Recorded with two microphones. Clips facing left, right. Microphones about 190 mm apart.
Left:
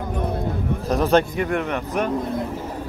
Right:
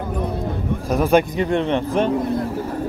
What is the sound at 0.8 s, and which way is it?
Speech, 10° right (ahead or behind).